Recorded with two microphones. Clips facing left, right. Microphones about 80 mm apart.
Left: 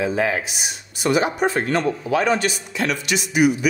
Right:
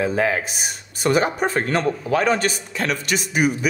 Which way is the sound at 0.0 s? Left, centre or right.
Right.